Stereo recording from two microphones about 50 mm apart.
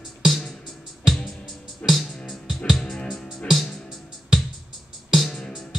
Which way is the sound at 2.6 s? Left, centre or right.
Centre.